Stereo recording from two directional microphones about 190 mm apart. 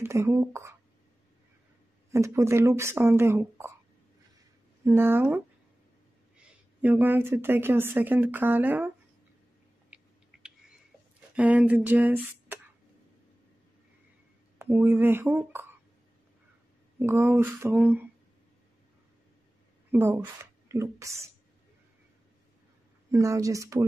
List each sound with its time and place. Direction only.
0.0 s speech: 15° right (ahead or behind)
2.0 s speech: 15° right (ahead or behind)
4.8 s a woman's voice: 10° right (ahead or behind)
10.3 s a sound: 5° right (ahead or behind)
11.3 s speech: 10° right (ahead or behind)
14.6 s speech: 10° right (ahead or behind)
17.0 s speech: 15° right (ahead or behind)
19.9 s a woman's voice: 15° right (ahead or behind)
23.1 s speech: 15° right (ahead or behind)